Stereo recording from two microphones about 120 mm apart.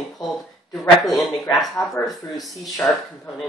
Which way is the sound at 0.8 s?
Centre (ahead or behind).